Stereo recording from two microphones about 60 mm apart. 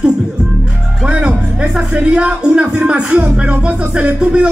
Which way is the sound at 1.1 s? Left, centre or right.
Centre.